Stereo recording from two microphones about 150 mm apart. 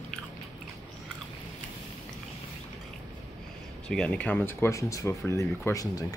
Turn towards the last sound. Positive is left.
turn(degrees=20)  # may be behind; listen again after turning